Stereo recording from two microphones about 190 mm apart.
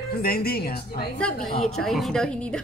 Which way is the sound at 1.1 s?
5° left (ahead or behind).